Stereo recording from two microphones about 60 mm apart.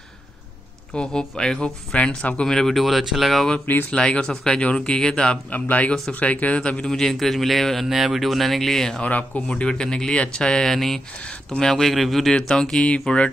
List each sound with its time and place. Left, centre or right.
0.9 s a man's voice: centre
3.9 s speech: centre
5.5 s a man's voice: left; by 9.0 s centre
9.0 s speech: centre